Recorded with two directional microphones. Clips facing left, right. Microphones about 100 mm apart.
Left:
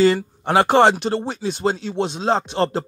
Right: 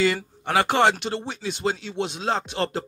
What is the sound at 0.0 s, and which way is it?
Speech, 35° left (ahead or behind).